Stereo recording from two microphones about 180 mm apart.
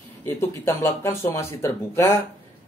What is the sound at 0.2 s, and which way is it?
Speech, 15° left (ahead or behind).